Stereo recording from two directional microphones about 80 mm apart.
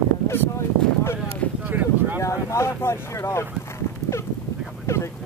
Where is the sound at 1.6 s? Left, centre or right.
Right.